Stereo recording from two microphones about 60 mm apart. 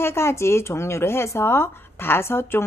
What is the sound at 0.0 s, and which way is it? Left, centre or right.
Speech, left.